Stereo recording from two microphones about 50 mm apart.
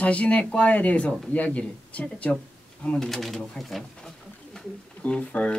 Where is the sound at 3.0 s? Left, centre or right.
Centre.